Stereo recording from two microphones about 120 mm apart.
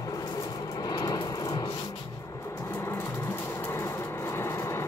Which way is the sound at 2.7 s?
20° left (ahead or behind).